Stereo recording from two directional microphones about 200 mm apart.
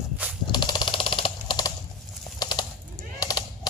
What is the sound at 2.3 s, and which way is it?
Bird, 20° left (ahead or behind).